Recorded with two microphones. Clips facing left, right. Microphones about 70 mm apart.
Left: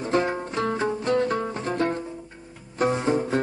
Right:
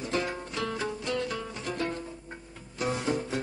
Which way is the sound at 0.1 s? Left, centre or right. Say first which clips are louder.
Left 8 dB; left.